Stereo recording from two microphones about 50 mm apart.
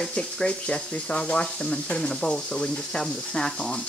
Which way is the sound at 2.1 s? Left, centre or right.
Centre.